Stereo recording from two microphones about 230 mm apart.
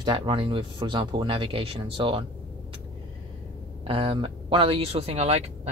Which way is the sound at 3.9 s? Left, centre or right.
Right.